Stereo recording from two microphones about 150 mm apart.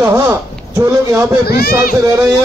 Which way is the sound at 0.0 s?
20° right (ahead or behind).